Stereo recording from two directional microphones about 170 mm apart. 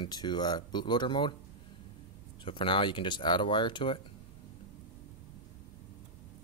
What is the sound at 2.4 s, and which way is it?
Speech, 30° left (ahead or behind).